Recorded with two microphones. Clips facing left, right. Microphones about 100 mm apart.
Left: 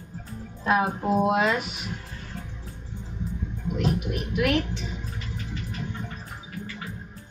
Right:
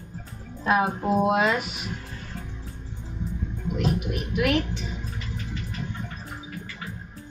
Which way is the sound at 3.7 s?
Centre (ahead or behind).